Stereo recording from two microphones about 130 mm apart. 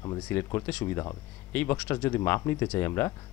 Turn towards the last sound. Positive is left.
turn(degrees=20)  # may be behind; listen again after turning